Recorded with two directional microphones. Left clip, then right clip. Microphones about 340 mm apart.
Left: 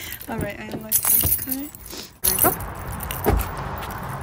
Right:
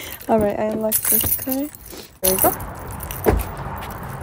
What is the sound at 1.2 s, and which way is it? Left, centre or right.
Speech, centre.